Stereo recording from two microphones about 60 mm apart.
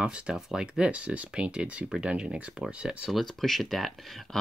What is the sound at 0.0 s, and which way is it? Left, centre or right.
Speech, centre.